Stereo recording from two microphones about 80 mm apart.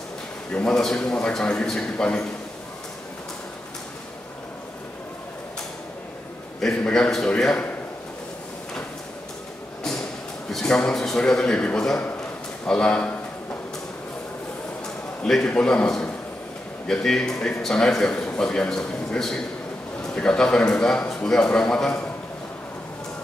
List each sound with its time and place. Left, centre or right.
0.5 s a man's voice: centre
6.6 s a man's voice: centre
10.5 s a man's voice: centre
15.2 s a man's voice: centre